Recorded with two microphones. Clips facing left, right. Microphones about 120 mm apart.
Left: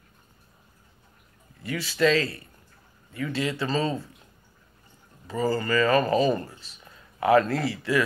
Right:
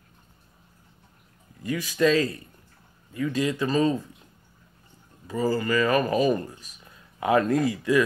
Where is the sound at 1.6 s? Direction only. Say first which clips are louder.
Right 1 dB; 15° right (ahead or behind).